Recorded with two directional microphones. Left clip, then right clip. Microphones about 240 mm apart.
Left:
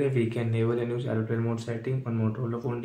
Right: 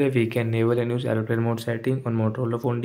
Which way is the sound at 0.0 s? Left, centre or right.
Right.